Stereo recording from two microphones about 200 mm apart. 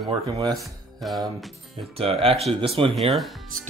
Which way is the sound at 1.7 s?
30° right (ahead or behind).